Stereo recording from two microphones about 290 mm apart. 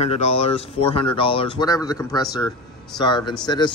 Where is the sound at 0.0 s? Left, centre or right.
Left.